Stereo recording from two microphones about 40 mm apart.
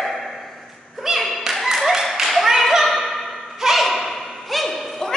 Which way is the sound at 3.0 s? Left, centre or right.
Centre.